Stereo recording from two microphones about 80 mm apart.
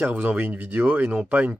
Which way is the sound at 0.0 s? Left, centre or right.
Centre.